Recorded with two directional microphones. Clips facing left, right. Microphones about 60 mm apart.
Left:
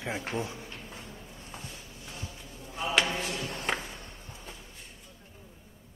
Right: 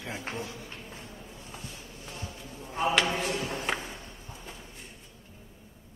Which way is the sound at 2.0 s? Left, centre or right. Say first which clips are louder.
Right 2 dB; right.